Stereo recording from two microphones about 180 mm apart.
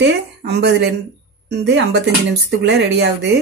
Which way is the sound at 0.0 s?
70° right (ahead or behind).